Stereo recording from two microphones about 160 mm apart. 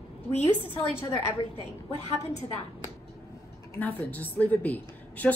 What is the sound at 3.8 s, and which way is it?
A woman's voice, 10° left (ahead or behind).